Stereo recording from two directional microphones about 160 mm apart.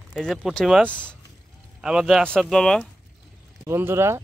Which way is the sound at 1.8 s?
5° right (ahead or behind).